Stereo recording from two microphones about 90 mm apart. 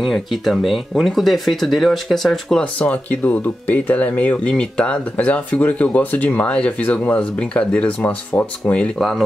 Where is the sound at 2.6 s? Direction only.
15° left (ahead or behind).